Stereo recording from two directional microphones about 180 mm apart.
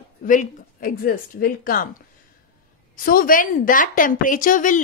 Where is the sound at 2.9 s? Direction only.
50° left (ahead or behind).